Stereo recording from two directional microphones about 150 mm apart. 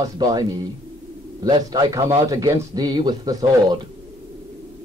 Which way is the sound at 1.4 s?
25° right (ahead or behind).